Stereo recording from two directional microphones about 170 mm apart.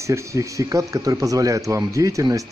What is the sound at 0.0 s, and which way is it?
Speech, 15° right (ahead or behind).